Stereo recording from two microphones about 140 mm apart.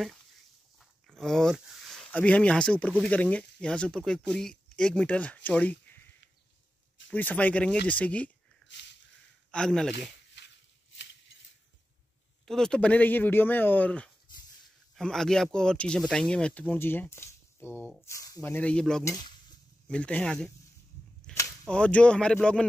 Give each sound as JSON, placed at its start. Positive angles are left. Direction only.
{"t": 0.7, "sound": "speech", "side_deg": 0}
{"t": 7.1, "sound": "speech", "side_deg": 10}
{"t": 9.5, "sound": "speech", "side_deg": 5}
{"t": 12.4, "sound": "speech", "side_deg": 5}
{"t": 19.0, "sound": "speech", "side_deg": 30}
{"t": 19.9, "sound": "speech", "side_deg": 5}
{"t": 21.3, "sound": "cap gun", "side_deg": 5}
{"t": 21.6, "sound": "speech", "side_deg": 10}